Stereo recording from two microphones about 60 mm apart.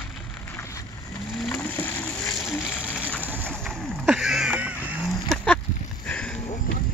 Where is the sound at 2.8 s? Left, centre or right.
Right.